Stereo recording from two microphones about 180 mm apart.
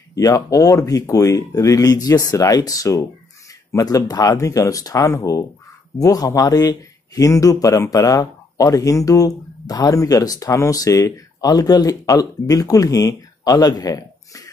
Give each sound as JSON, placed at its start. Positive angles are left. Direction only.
{"t": 0.1, "sound": "speech", "side_deg": 20}